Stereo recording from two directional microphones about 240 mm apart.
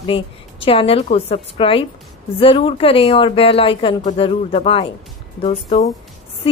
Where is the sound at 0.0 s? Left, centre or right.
Left.